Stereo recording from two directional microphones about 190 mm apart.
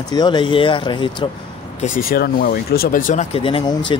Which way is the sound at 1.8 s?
50° left (ahead or behind).